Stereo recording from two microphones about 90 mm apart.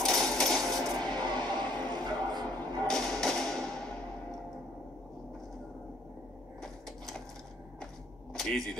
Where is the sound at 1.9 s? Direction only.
50° right (ahead or behind).